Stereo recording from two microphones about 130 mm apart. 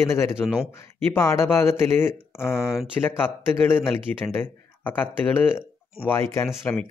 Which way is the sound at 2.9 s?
15° left (ahead or behind).